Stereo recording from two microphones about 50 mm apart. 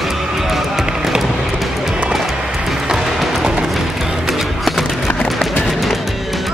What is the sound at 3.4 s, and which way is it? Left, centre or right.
Music, centre.